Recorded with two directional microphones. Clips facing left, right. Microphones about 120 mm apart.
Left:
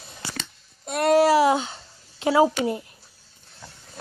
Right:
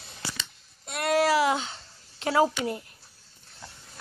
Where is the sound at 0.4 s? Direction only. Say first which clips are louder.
Left 4 dB; 45° left (ahead or behind).